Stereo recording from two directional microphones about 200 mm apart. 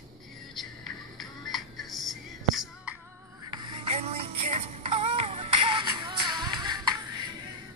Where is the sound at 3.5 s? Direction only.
30° right (ahead or behind).